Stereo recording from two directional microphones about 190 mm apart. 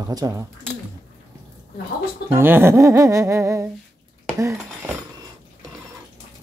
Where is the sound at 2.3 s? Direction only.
10° right (ahead or behind).